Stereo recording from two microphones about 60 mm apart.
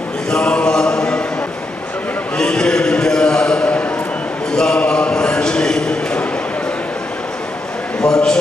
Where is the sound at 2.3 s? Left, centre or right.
Centre.